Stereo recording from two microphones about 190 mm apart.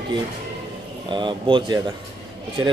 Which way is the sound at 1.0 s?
25° right (ahead or behind).